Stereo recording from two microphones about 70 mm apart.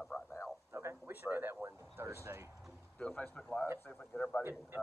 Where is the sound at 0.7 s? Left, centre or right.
Right.